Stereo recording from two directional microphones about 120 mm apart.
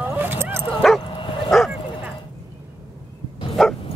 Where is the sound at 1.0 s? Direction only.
45° left (ahead or behind).